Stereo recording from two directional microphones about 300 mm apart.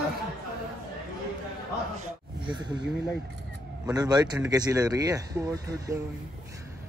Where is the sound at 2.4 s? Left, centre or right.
Centre.